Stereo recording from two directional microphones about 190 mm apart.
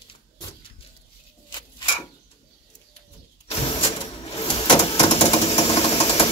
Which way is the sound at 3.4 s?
30° left (ahead or behind).